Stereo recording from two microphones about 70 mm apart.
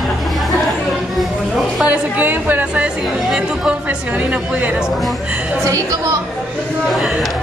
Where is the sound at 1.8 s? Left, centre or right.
Right.